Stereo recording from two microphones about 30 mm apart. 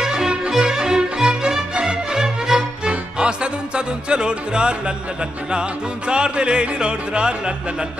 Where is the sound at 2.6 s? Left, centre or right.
Right.